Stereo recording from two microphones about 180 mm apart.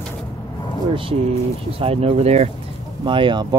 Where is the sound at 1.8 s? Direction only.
35° right (ahead or behind).